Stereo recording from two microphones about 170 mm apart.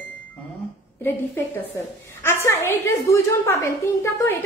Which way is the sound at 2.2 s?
15° left (ahead or behind).